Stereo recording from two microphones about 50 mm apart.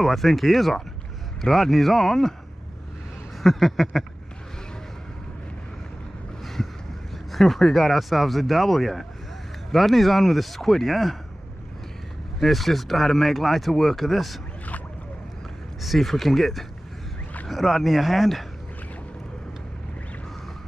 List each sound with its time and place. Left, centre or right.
0.0 s speech: centre
3.4 s speech: centre
6.4 s vehicle: centre
7.3 s speech: centre
12.4 s speech: centre
15.8 s speech: centre